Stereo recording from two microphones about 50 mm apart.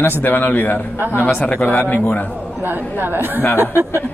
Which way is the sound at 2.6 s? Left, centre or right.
Right.